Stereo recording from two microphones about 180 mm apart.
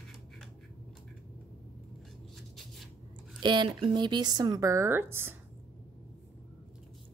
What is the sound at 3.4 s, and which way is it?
Speech, 25° right (ahead or behind).